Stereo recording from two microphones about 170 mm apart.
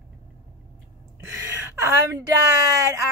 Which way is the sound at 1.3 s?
15° right (ahead or behind).